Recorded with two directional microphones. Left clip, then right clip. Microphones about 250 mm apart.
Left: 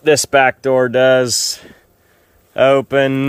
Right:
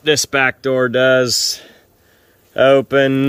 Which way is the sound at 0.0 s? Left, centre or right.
Left.